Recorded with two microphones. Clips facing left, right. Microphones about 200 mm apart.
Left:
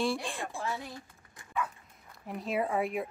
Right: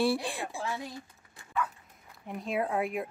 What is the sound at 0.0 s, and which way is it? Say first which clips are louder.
Speech: right 3 dB; 5° right (ahead or behind).